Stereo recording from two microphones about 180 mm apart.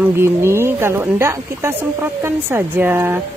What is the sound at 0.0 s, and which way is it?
A woman's voice, 15° right (ahead or behind).